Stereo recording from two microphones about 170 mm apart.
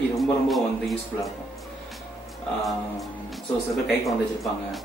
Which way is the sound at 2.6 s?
Centre (ahead or behind).